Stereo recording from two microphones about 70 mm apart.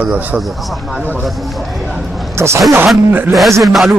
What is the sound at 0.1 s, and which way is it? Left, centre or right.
Speech, right.